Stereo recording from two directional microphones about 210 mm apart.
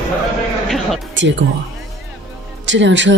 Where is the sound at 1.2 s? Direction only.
60° right (ahead or behind).